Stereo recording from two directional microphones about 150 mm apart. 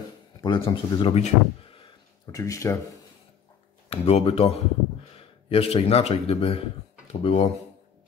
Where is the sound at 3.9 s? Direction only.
45° left (ahead or behind).